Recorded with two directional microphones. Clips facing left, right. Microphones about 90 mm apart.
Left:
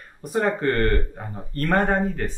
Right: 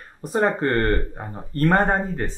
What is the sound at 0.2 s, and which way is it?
Speech, 25° right (ahead or behind).